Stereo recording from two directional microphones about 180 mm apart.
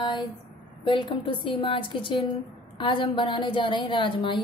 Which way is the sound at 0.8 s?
30° left (ahead or behind).